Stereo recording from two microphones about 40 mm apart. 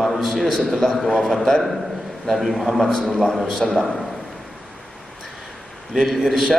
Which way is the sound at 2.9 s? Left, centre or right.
Centre.